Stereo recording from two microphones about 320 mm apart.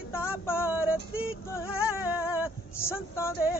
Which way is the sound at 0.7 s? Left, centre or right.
Centre.